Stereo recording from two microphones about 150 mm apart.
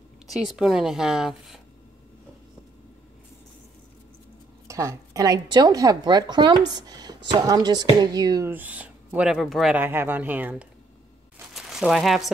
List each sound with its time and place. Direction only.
0.3 s a woman's voice: centre (ahead or behind)
4.6 s a woman's voice: 20° right (ahead or behind)
8.5 s speech: 10° right (ahead or behind)
9.8 s speech: 15° right (ahead or behind)
11.5 s crumpling: centre (ahead or behind)